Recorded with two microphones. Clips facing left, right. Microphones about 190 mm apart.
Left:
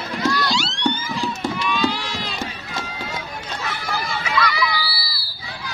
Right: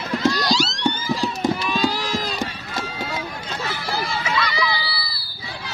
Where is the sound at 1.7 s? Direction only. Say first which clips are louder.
Even; 40° right (ahead or behind).